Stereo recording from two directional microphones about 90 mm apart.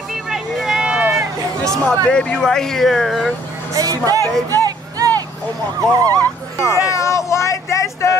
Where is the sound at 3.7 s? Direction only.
40° right (ahead or behind).